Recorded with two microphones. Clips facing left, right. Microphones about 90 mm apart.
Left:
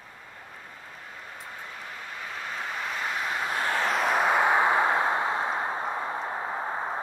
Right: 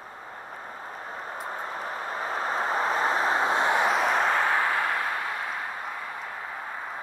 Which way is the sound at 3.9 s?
Centre (ahead or behind).